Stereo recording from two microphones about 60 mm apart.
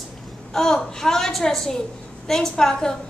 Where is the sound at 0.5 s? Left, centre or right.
Centre.